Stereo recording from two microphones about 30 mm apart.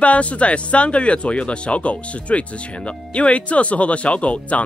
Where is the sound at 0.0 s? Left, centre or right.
Left.